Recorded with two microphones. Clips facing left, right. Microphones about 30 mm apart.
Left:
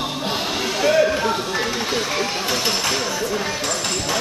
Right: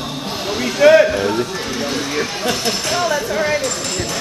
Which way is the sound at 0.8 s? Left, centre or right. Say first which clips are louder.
Right 8 dB; right.